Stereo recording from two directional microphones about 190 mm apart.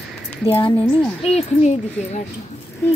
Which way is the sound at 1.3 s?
35° left (ahead or behind).